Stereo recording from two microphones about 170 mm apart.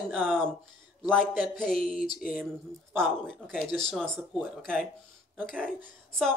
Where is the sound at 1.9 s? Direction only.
55° left (ahead or behind).